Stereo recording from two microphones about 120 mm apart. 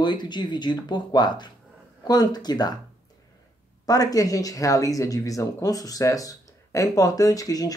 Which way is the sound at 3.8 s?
30° left (ahead or behind).